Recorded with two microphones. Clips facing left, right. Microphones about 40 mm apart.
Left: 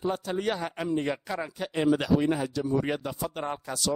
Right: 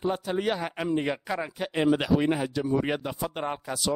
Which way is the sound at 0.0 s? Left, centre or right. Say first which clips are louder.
Right 1 dB; centre.